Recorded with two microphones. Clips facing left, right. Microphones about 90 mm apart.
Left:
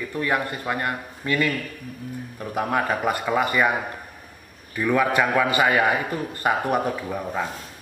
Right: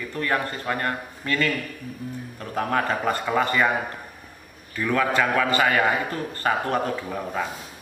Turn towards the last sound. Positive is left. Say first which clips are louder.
# left 1 dB
turn(degrees=5)  # may be behind; listen again after turning